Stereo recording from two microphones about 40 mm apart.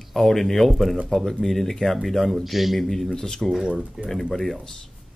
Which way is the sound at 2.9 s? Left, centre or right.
Centre.